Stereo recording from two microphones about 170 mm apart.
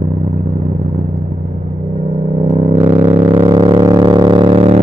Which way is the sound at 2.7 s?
30° right (ahead or behind).